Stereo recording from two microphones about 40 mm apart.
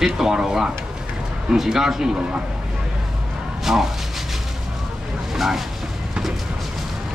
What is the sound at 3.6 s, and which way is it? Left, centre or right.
Speech, centre.